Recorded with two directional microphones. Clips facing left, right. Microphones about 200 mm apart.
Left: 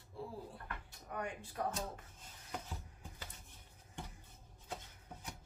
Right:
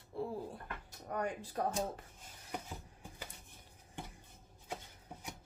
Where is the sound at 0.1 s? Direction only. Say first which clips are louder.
Right 7 dB; 60° right (ahead or behind).